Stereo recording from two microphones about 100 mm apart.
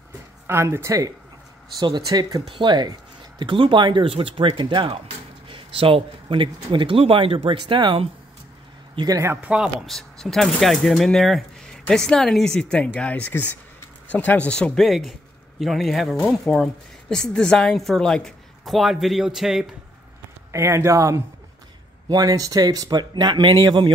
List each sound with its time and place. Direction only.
0.5 s speech: 25° right (ahead or behind)
2.5 s speech: 50° right (ahead or behind)
7.6 s speech: 50° right (ahead or behind)
8.9 s speech: 40° right (ahead or behind)
9.4 s speech: 10° right (ahead or behind)
9.8 s speech: 5° left (ahead or behind)
20.5 s speech: 30° right (ahead or behind); by 23.9 s 50° right (ahead or behind)